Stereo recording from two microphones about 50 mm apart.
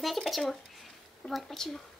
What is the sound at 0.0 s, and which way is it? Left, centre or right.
Speech, centre.